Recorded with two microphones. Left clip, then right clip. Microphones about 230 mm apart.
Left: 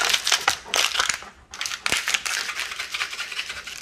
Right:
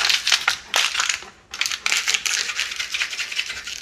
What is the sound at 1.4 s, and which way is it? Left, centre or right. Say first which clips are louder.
Crushing: right 4 dB; centre.